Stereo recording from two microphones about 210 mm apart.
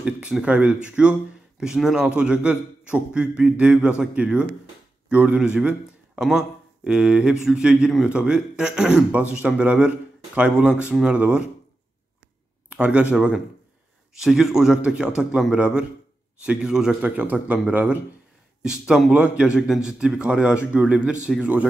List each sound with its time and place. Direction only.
0.0 s a man's voice: 5° right (ahead or behind)
12.6 s a sound: 5° right (ahead or behind)
13.1 s a man's voice: 5° right (ahead or behind)